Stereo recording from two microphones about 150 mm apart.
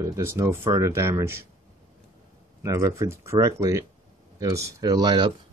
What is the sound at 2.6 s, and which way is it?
Speech, 20° right (ahead or behind).